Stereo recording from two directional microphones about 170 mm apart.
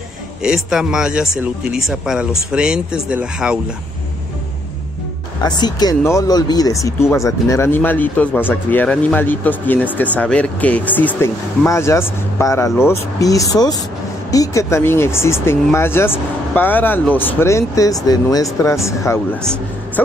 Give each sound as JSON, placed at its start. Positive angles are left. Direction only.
{"t": 0.4, "sound": "speech", "side_deg": -5}
{"t": 5.4, "sound": "speech", "side_deg": 25}